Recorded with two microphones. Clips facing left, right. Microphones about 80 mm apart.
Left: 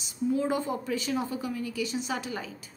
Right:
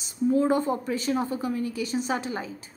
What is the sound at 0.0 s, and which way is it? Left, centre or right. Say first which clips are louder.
A woman's voice: right 5 dB; right.